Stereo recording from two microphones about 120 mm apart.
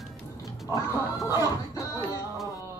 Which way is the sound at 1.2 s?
30° left (ahead or behind).